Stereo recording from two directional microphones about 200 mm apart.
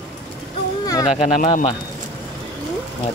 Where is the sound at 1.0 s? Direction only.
35° left (ahead or behind).